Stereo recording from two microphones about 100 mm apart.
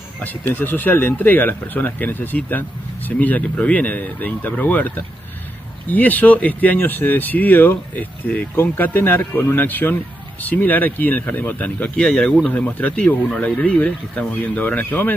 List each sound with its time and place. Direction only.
0.6 s speech: 20° left (ahead or behind)